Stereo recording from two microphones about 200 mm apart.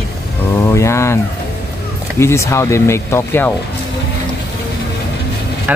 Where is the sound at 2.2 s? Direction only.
15° left (ahead or behind).